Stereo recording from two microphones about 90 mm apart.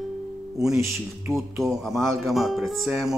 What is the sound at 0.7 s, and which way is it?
Speech, 30° right (ahead or behind).